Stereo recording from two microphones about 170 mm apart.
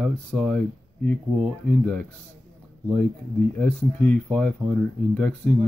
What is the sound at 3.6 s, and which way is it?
Speech, 5° left (ahead or behind).